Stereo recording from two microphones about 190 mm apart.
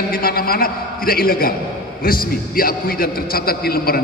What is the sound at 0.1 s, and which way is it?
A man's voice, 50° left (ahead or behind).